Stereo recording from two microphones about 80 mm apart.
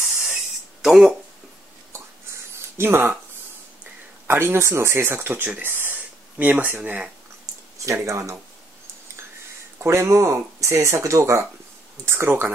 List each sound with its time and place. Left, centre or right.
0.0 s a sound: centre
0.8 s speech: centre
1.9 s a sound: right
4.3 s speech: right
7.8 s speech: right
9.8 s speech: right
12.1 s speech: right